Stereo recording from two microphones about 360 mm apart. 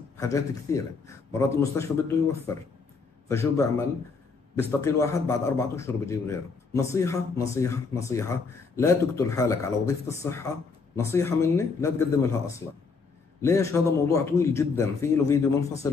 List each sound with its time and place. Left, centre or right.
0.2 s a man's voice: centre
3.3 s a man's voice: centre